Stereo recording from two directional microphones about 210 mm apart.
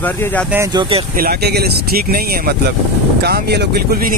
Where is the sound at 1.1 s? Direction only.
45° right (ahead or behind).